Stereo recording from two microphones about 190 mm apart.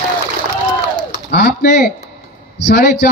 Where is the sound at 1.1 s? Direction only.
60° left (ahead or behind).